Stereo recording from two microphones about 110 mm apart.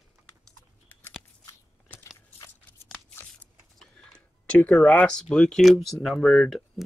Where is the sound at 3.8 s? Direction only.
5° left (ahead or behind).